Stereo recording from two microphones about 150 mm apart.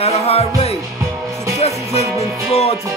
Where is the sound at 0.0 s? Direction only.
45° left (ahead or behind).